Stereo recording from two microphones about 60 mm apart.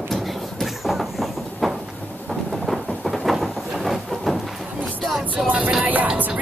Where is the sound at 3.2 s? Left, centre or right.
Centre.